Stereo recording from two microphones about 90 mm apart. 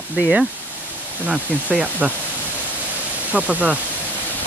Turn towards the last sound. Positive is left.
turn(degrees=-15)  # may be behind; listen again after turning